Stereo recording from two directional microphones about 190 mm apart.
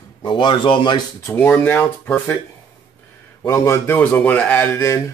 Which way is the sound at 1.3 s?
10° left (ahead or behind).